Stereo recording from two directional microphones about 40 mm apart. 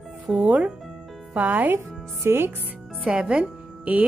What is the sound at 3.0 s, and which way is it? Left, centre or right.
Speech, right.